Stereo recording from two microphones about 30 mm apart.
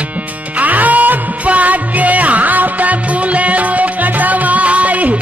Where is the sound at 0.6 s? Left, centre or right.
Right.